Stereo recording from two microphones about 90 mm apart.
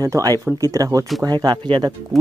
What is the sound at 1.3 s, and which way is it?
Speech, 50° right (ahead or behind).